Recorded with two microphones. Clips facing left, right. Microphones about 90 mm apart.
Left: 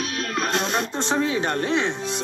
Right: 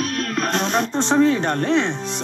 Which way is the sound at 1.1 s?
10° left (ahead or behind).